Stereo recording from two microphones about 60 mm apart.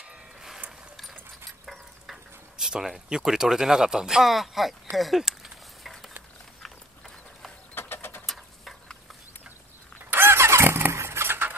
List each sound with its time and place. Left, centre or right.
2.5 s speech: centre
4.9 s a sound: centre
7.7 s mechanisms: left
10.1 s vehicle: right